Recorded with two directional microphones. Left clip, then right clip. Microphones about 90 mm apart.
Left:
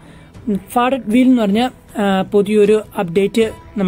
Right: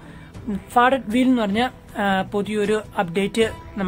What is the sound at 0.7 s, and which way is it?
A woman's voice, 35° left (ahead or behind).